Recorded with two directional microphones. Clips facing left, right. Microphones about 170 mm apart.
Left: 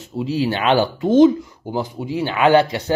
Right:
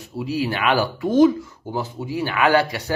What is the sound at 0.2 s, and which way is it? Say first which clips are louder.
Speech: left 3 dB; 25° left (ahead or behind).